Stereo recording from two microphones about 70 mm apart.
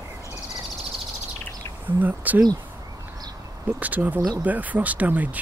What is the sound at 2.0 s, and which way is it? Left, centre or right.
Speech, right.